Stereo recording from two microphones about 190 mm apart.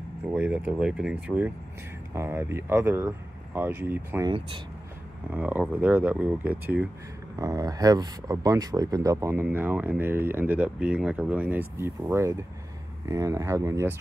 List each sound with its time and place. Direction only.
0.3 s speech: 5° right (ahead or behind)
5.3 s speech: 10° right (ahead or behind)